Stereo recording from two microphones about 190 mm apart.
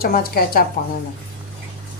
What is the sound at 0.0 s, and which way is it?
Speech, 50° left (ahead or behind).